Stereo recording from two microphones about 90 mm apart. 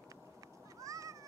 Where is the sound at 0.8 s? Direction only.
35° right (ahead or behind).